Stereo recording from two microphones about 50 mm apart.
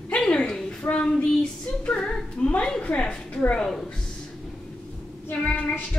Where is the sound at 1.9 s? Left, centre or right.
Centre.